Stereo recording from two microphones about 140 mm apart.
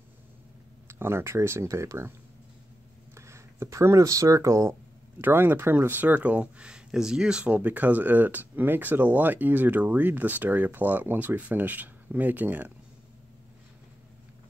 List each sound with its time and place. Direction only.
0.8 s speech: 15° right (ahead or behind)
3.2 s speech: 20° right (ahead or behind)